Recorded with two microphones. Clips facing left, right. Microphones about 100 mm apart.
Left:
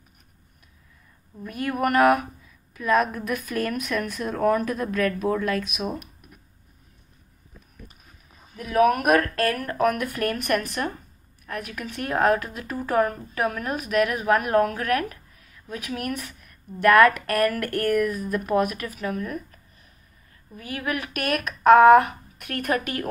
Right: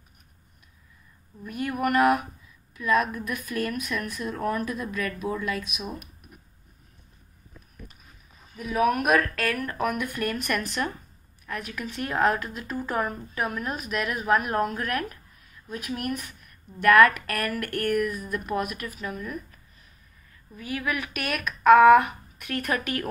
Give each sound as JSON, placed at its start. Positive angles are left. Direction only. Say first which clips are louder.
{"t": 1.4, "sound": "a woman's voice", "louder": "left 2 dB", "side_deg": 60}
{"t": 3.4, "sound": "speech", "louder": "left 2 dB", "side_deg": 70}
{"t": 8.5, "sound": "speech", "louder": "left 4 dB", "side_deg": 70}
{"t": 9.0, "sound": "speech", "louder": "left 3 dB", "side_deg": 45}
{"t": 11.5, "sound": "a woman's voice", "louder": "left 1 dB", "side_deg": 55}
{"t": 15.7, "sound": "a woman's voice", "louder": "left 1 dB", "side_deg": 75}
{"t": 16.8, "sound": "speech", "louder": "left 2 dB", "side_deg": 45}
{"t": 17.6, "sound": "speech", "louder": "left 3 dB", "side_deg": 35}
{"t": 18.9, "sound": "a woman's voice", "louder": "left 7 dB", "side_deg": 60}
{"t": 20.5, "sound": "speech", "louder": "left 1 dB", "side_deg": 45}
{"t": 21.9, "sound": "speech", "louder": "left 2 dB", "side_deg": 45}